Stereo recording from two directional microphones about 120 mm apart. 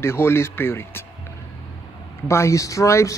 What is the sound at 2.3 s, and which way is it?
Speech, 25° left (ahead or behind).